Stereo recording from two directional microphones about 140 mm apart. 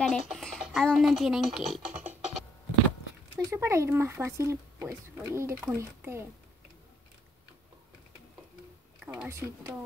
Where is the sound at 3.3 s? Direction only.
20° right (ahead or behind).